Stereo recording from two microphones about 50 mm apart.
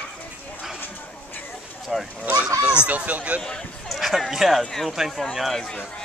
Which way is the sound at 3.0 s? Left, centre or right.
Right.